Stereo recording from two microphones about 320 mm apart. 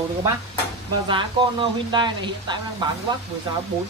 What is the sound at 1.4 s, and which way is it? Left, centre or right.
Speech, centre.